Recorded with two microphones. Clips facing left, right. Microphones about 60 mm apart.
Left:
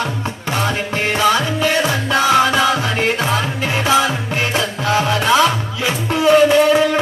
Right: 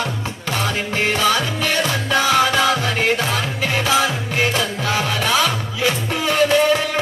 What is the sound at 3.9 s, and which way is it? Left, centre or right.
Music, left.